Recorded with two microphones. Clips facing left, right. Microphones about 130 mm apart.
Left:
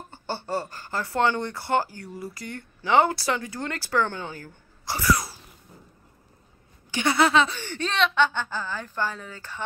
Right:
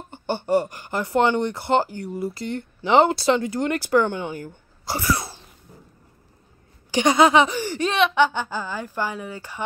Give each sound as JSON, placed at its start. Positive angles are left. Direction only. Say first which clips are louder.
{"t": 0.1, "sound": "speech", "louder": "right 8 dB", "side_deg": -20}
{"t": 4.8, "sound": "sneeze", "louder": "even", "side_deg": -25}
{"t": 7.0, "sound": "speech", "louder": "right 5 dB", "side_deg": -20}